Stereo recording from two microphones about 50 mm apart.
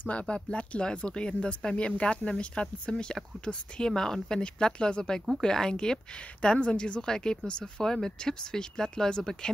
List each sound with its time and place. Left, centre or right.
0.0 s speech: left